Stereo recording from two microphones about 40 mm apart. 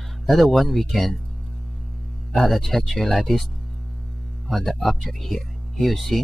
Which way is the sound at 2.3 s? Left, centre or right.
Centre.